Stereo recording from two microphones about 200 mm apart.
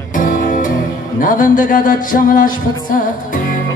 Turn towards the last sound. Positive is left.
turn(degrees=40)  # may be behind; listen again after turning